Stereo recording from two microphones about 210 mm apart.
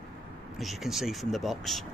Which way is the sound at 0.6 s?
Centre (ahead or behind).